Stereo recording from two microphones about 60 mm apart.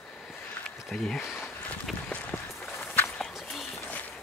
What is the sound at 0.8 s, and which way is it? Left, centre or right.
Speech, centre.